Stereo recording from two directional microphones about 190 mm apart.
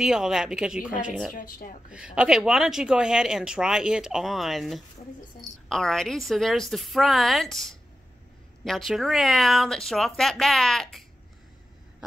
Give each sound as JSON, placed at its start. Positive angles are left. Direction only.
{"t": 0.0, "sound": "speech", "side_deg": -5}
{"t": 1.3, "sound": "speech", "side_deg": 45}
{"t": 1.9, "sound": "speech", "side_deg": -5}